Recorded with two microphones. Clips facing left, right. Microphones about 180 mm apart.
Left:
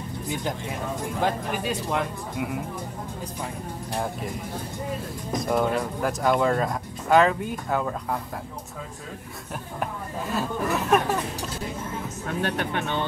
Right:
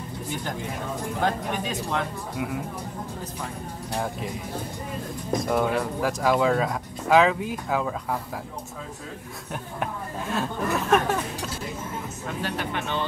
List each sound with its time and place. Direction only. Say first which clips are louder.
1.2 s speech: even; 10° left (ahead or behind)
5.3 s speech: even; centre (ahead or behind)
9.5 s speech: even; centre (ahead or behind)
12.4 s speech: left 3 dB; 55° left (ahead or behind)